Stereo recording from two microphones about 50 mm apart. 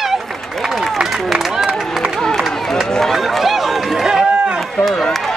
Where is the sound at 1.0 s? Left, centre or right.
Centre.